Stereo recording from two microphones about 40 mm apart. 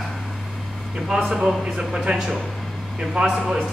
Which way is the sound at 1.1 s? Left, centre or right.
Right.